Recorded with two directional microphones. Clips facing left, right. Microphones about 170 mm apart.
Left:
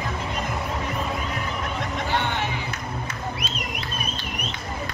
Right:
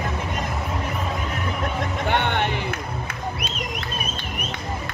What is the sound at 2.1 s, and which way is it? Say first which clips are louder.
Music: right 5 dB; 60° right (ahead or behind).